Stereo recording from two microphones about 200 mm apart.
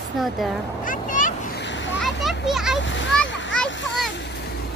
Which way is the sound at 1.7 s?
65° left (ahead or behind).